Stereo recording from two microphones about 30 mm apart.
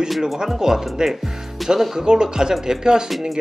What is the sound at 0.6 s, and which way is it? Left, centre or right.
Speech, centre.